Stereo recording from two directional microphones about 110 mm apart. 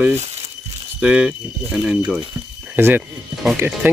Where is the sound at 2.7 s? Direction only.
20° right (ahead or behind).